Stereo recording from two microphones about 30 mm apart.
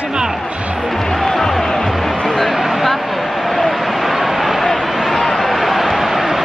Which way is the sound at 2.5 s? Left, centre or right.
Centre.